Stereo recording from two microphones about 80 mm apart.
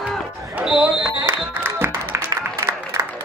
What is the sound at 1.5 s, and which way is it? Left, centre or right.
Music, right.